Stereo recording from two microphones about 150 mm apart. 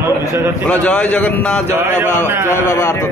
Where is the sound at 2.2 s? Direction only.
15° right (ahead or behind).